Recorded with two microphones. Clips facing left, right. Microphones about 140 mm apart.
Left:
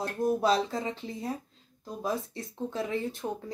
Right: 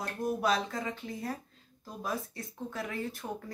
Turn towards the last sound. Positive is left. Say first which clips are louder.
# left 5 dB
turn(degrees=25)  # may be behind; listen again after turning